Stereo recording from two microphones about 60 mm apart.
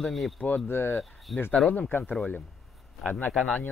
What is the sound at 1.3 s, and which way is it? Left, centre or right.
Speech, centre.